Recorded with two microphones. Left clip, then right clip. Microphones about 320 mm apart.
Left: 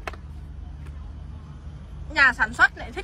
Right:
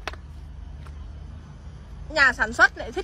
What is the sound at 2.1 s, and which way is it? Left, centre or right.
Speech, centre.